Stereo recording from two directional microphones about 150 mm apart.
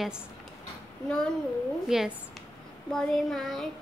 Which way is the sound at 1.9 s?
5° right (ahead or behind).